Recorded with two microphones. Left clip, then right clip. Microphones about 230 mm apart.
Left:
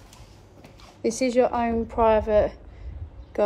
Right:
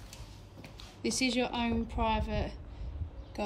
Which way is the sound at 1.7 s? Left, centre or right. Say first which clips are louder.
Left 12 dB; left.